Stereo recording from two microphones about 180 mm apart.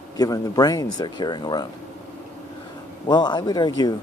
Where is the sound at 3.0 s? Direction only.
25° left (ahead or behind).